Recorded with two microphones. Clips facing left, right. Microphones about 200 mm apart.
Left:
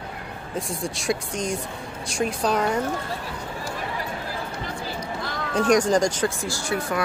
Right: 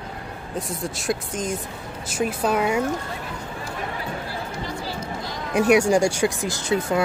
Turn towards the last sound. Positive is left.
turn(degrees=-20)  # may be behind; listen again after turning